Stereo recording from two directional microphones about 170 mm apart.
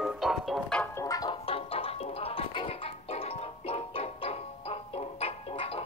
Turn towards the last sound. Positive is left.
turn(degrees=35)  # may be behind; listen again after turning